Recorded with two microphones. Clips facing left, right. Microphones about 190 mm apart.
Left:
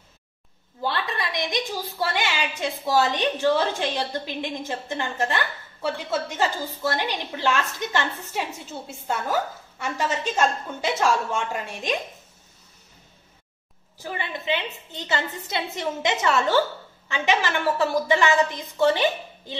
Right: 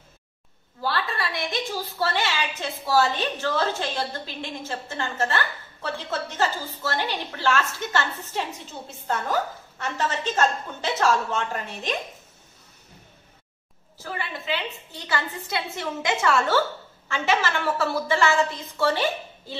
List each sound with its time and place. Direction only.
0.8 s a woman's voice: 20° left (ahead or behind)
14.0 s a woman's voice: 20° left (ahead or behind)